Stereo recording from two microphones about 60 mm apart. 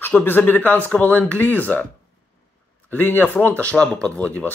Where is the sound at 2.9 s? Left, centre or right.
Left.